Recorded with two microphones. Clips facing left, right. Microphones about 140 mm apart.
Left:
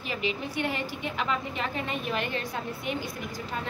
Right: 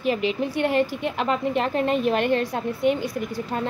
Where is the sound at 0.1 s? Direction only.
50° right (ahead or behind).